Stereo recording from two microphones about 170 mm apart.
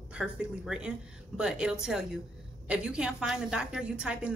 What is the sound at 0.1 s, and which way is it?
A woman's voice, 5° right (ahead or behind).